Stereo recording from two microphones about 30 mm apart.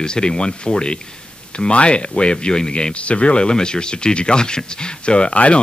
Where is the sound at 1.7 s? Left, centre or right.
Left.